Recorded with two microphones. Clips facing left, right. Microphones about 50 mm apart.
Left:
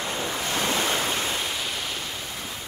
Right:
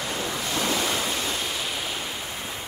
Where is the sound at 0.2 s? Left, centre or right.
Left.